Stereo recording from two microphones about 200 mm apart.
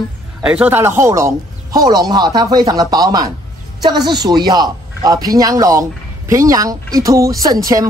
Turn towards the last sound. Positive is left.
turn(degrees=-15)  # may be behind; listen again after turning